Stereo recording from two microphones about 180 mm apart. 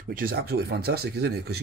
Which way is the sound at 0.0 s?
50° right (ahead or behind).